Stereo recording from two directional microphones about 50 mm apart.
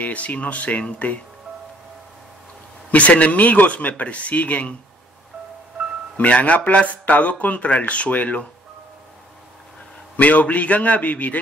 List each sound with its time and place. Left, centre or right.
0.0 s speech: left
2.9 s speech: left
6.1 s speech: left
10.1 s speech: left